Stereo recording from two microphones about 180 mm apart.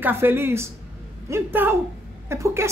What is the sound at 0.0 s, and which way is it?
Speech, 10° right (ahead or behind).